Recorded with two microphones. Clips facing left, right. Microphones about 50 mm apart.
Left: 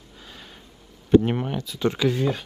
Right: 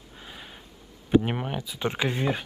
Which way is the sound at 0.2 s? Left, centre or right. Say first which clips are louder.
Right 1 dB; centre.